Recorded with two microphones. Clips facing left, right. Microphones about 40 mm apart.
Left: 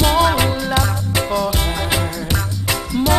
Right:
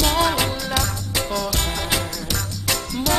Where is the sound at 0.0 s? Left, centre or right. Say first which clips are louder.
Left 4 dB; centre.